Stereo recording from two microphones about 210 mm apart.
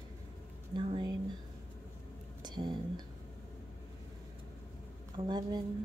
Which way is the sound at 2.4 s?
20° right (ahead or behind).